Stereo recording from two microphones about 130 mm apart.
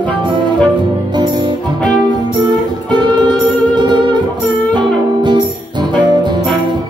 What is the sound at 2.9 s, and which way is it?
Music, 35° right (ahead or behind).